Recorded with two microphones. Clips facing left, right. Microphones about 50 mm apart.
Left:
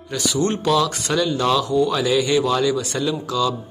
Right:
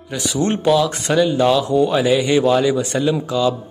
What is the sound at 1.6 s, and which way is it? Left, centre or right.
Speech, right.